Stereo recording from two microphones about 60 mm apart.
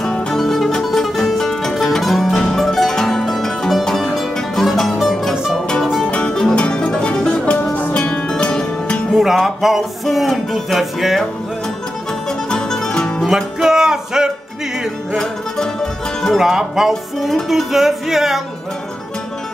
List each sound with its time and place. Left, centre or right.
0.3 s music: centre
6.1 s music: centre
9.1 s music: centre
12.3 s music: centre
13.3 s music: centre
15.1 s music: centre
16.3 s music: centre